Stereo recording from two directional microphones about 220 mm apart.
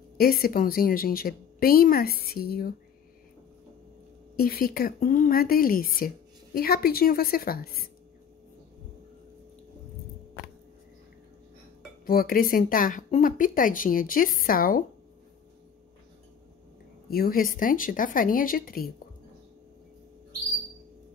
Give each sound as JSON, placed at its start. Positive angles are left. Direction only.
{"t": 0.2, "sound": "speech", "side_deg": 40}
{"t": 4.4, "sound": "speech", "side_deg": 45}
{"t": 12.1, "sound": "speech", "side_deg": 40}
{"t": 17.1, "sound": "speech", "side_deg": 40}